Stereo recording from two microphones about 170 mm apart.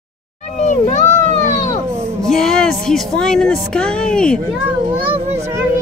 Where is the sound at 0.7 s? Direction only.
50° left (ahead or behind).